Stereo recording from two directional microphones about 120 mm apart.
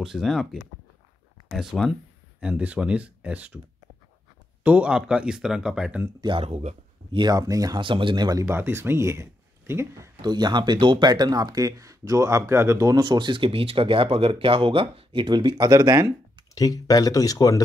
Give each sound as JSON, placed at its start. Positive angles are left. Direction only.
{"t": 0.0, "sound": "speech", "side_deg": -5}
{"t": 4.6, "sound": "speech", "side_deg": -10}
{"t": 6.2, "sound": "speech", "side_deg": -45}
{"t": 7.8, "sound": "speech", "side_deg": -45}
{"t": 10.2, "sound": "speech", "side_deg": -35}
{"t": 16.5, "sound": "speech", "side_deg": 30}